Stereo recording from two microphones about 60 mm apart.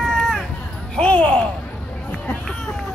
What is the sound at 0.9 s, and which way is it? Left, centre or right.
Music, centre.